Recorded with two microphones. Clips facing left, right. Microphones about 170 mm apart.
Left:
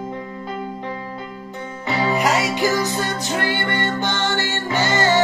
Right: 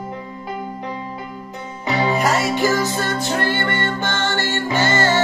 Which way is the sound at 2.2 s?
15° left (ahead or behind).